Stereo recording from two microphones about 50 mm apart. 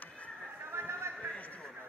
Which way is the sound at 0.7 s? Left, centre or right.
Right.